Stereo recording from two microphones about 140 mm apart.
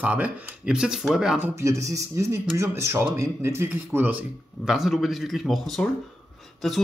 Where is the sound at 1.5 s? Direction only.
20° right (ahead or behind).